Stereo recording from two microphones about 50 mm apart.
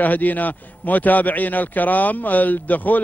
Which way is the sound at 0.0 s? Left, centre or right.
Left.